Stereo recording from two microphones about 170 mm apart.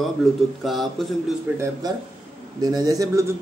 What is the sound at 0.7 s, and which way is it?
Speech, centre (ahead or behind).